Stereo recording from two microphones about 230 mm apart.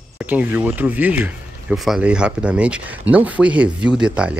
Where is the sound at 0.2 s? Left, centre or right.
Centre.